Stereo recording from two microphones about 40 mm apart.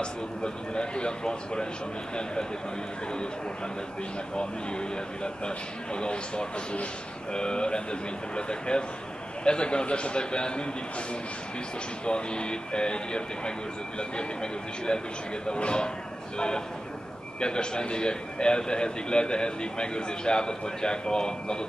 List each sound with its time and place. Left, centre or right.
0.0 s a man's voice: left
4.4 s a man's voice: left
12.1 s a man's voice: left